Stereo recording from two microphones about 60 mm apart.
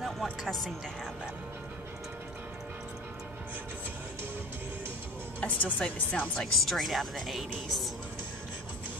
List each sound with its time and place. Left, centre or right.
0.0 s speech: centre
5.4 s speech: left
6.4 s a woman's voice: centre